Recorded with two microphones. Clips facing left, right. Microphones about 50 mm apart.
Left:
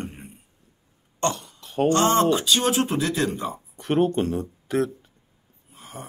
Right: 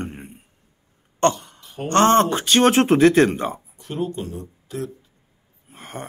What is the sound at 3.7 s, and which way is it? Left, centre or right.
Speech, left.